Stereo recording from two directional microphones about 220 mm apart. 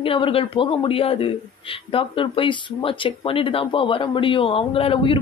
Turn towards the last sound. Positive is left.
turn(degrees=25)  # may be behind; listen again after turning